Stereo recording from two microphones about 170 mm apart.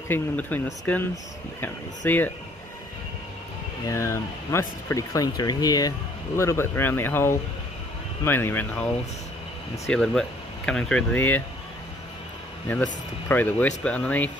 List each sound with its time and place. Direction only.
0.1 s speech: 10° left (ahead or behind)
3.8 s speech: 15° left (ahead or behind)
13.3 s speech: 10° left (ahead or behind)